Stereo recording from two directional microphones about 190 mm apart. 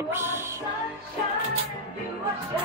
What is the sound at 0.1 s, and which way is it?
Music, 10° right (ahead or behind).